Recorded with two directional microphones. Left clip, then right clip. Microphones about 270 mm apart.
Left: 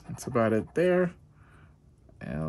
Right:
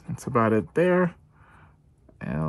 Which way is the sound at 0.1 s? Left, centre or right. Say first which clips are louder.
Right 4 dB; centre.